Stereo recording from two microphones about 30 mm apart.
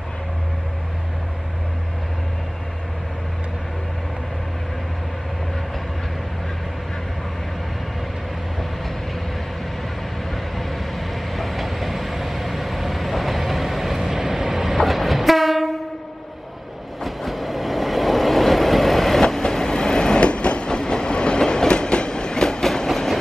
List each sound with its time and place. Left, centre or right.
10.3 s train: centre
14.8 s train: centre
17.0 s train: centre
19.3 s train: centre
20.2 s train: left